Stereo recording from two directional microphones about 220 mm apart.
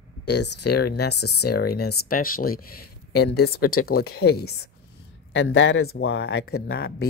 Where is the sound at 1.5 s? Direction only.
45° left (ahead or behind); by 6.0 s 65° left (ahead or behind).